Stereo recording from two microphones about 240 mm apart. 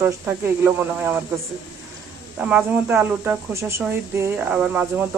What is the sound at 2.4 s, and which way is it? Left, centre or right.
Speech, centre.